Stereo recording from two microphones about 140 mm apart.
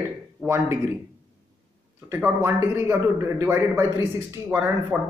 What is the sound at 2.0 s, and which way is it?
A man's voice, 15° right (ahead or behind).